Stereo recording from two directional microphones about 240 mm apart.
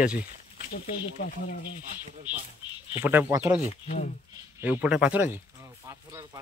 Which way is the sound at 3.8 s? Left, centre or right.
Left.